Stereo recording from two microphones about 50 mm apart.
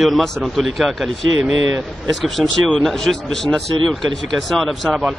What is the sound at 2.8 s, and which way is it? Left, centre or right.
Speech, centre.